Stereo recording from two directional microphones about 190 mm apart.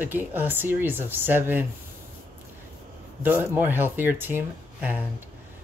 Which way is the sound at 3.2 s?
10° right (ahead or behind).